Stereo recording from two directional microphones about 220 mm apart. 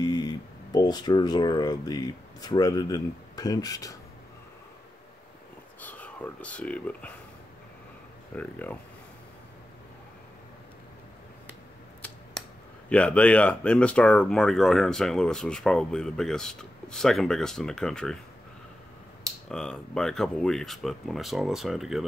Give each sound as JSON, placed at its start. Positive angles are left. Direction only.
{"t": 0.0, "sound": "a sound", "side_deg": 15}
{"t": 0.7, "sound": "speech", "side_deg": 20}
{"t": 5.8, "sound": "speech", "side_deg": 5}
{"t": 8.4, "sound": "speech", "side_deg": 5}
{"t": 12.9, "sound": "speech", "side_deg": 5}
{"t": 19.5, "sound": "speech", "side_deg": 5}